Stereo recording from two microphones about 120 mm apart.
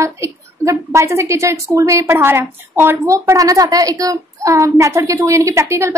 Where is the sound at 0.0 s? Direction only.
25° right (ahead or behind).